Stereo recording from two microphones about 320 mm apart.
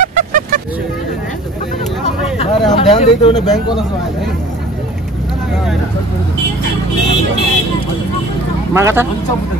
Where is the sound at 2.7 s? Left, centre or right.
Left.